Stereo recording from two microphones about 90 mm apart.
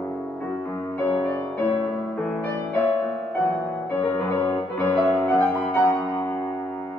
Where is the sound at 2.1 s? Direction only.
5° left (ahead or behind).